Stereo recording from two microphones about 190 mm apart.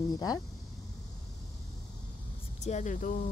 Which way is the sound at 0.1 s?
20° left (ahead or behind).